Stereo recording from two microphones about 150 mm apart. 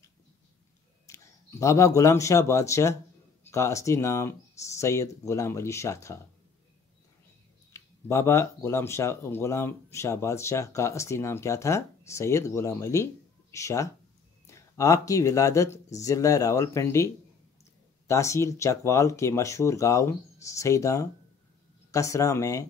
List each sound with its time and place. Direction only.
1.0 s speech: 20° left (ahead or behind)
7.7 s speech: 20° left (ahead or behind)